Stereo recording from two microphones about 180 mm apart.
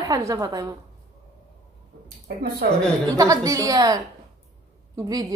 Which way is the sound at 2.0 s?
60° right (ahead or behind).